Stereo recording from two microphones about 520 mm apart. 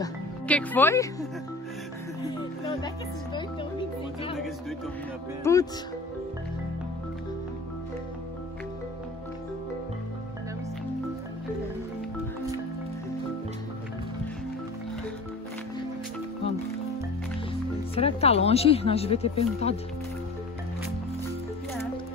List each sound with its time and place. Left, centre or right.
0.0 s speech: centre
5.4 s speech: centre
17.9 s speech: centre